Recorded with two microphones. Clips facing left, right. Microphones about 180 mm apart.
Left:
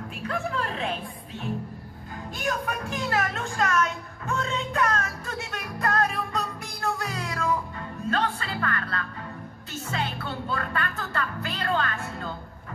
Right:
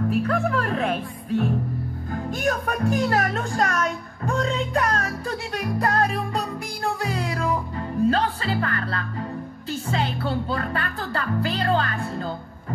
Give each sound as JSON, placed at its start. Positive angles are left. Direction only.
{"t": 0.3, "sound": "speech", "side_deg": -50}
{"t": 2.4, "sound": "speech", "side_deg": -45}